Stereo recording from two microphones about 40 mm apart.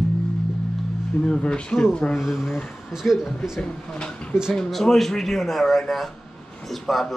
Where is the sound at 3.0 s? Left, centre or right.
Centre.